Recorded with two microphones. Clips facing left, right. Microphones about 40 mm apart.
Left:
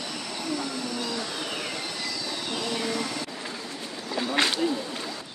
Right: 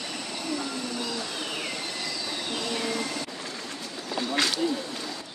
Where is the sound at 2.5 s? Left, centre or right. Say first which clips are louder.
Left 1 dB; centre.